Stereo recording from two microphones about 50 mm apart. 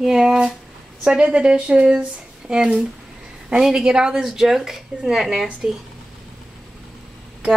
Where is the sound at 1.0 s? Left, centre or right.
Right.